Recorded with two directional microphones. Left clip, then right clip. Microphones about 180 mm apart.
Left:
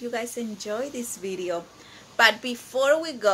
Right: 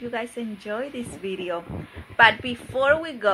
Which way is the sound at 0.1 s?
15° left (ahead or behind).